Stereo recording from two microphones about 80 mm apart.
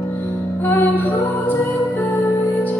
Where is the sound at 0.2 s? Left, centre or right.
Left.